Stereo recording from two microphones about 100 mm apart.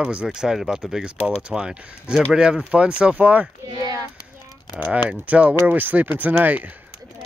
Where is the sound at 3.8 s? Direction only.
40° right (ahead or behind).